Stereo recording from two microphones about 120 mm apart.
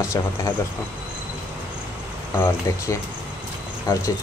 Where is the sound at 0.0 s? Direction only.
25° left (ahead or behind).